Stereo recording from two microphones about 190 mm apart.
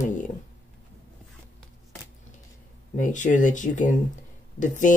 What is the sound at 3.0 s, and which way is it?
Speech, 40° left (ahead or behind).